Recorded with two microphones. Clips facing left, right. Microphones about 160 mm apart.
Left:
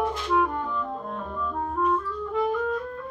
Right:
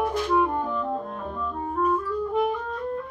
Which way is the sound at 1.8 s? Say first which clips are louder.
Right 2 dB; 5° right (ahead or behind).